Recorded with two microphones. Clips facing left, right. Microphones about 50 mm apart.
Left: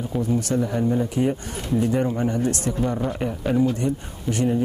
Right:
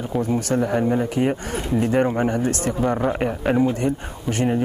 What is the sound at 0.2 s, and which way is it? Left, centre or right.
Speech, right.